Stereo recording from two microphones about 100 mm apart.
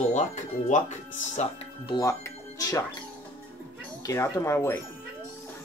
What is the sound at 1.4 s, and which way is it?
Speech, 90° left.